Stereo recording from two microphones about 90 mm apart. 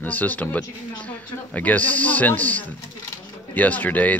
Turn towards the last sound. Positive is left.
turn(degrees=20)  # may be behind; listen again after turning